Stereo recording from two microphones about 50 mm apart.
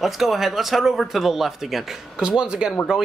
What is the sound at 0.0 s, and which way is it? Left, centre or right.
Speech, centre.